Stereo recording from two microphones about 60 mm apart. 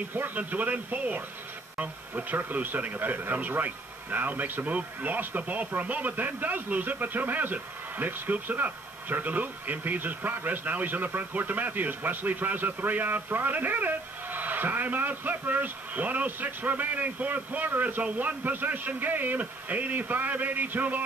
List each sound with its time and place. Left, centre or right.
0.1 s speech: right